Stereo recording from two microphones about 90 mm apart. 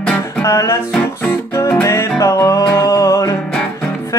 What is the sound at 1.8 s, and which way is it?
Music, 35° left (ahead or behind).